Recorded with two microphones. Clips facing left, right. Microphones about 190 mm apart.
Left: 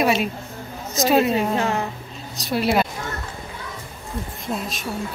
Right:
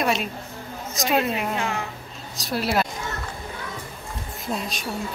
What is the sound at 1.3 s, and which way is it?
Speech, 35° left (ahead or behind).